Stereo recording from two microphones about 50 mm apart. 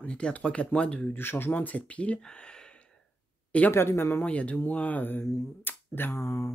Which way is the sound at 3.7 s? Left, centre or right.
Left.